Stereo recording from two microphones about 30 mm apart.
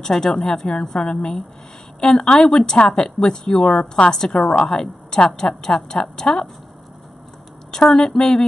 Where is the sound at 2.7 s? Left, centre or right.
Left.